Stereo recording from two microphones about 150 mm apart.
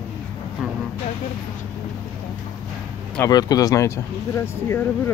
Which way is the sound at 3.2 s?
25° left (ahead or behind).